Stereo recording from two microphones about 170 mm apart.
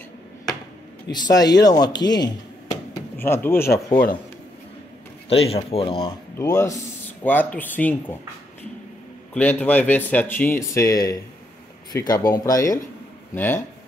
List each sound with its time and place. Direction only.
1.1 s speech: 25° left (ahead or behind)
5.3 s speech: 35° left (ahead or behind)
6.3 s speech: 15° left (ahead or behind)
9.3 s speech: 10° left (ahead or behind)